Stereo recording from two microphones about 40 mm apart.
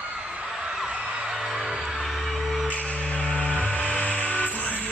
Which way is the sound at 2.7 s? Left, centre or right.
Left.